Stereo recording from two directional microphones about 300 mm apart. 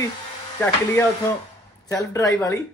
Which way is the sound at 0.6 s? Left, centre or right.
Centre.